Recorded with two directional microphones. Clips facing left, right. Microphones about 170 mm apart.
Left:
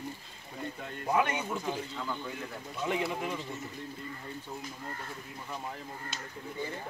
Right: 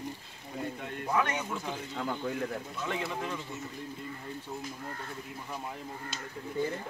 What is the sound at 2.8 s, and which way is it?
Speech, 10° left (ahead or behind).